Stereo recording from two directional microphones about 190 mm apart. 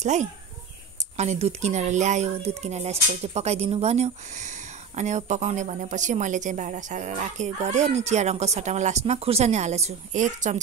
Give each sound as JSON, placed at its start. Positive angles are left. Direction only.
{"t": 0.0, "sound": "speech", "side_deg": -40}